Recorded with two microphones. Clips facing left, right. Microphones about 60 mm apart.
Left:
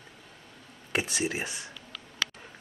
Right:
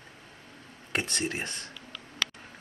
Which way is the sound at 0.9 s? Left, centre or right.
Centre.